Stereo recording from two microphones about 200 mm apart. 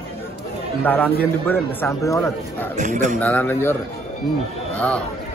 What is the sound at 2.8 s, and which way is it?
Speech, 40° right (ahead or behind).